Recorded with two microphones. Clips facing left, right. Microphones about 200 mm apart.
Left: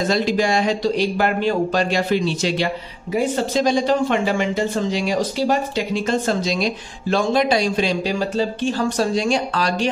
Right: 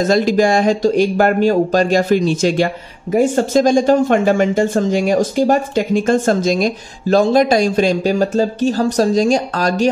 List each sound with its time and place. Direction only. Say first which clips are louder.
0.0 s speech: right 6 dB; 45° right (ahead or behind)